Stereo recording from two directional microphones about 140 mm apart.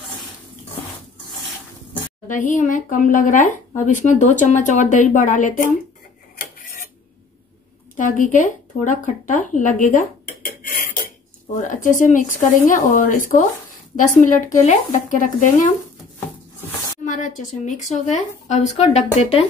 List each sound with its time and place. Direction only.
2.2 s speech: 70° left (ahead or behind)
6.3 s a sound: 90° left
8.0 s speech: 65° left (ahead or behind)
11.6 s speech: 70° left (ahead or behind)
17.0 s speech: 65° left (ahead or behind); by 19.4 s 50° left (ahead or behind)